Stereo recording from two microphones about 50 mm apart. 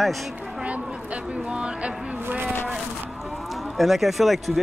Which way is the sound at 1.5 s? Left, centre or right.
Right.